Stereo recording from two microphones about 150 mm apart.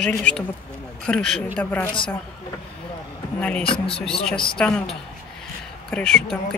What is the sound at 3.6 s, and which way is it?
Speech, 35° left (ahead or behind).